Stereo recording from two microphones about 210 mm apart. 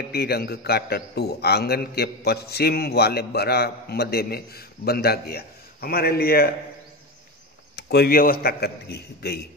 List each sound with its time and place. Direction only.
0.1 s a man's voice: 50° left (ahead or behind)
7.7 s a man's voice: 50° left (ahead or behind)